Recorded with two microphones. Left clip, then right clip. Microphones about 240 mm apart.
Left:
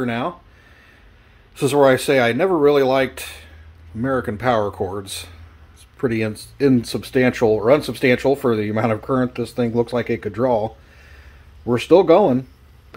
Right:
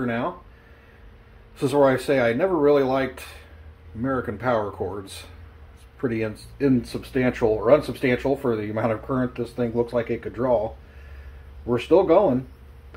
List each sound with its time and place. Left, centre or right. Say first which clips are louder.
0.0 s speech: left 3 dB; left
1.5 s speech: left 5 dB; left